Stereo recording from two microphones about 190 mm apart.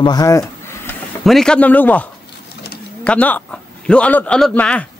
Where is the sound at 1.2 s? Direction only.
Centre (ahead or behind).